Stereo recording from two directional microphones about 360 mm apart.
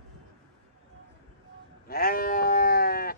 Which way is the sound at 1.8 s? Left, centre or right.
Left.